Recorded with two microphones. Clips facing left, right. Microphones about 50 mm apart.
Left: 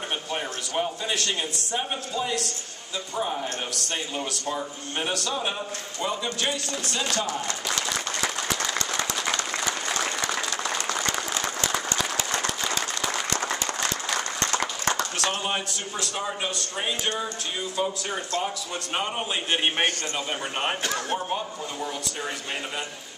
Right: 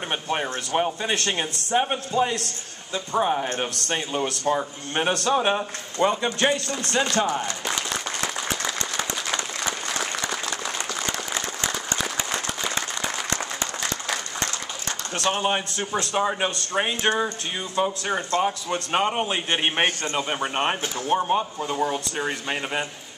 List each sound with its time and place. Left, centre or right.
0.3 s speech: right
10.2 s applause: centre
15.1 s speech: right
21.6 s speech: right